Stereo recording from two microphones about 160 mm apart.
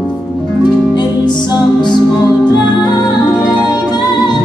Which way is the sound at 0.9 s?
25° left (ahead or behind).